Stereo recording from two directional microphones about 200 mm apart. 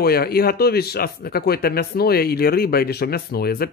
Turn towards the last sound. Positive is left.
turn(degrees=50)  # may be behind; listen again after turning